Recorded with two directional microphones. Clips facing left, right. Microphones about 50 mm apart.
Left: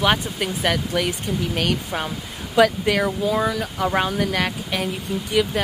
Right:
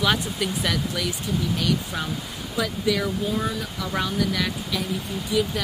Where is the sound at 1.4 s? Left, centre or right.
Left.